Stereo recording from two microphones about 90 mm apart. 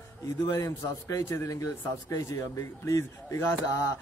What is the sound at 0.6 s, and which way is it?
A man's voice, 35° left (ahead or behind).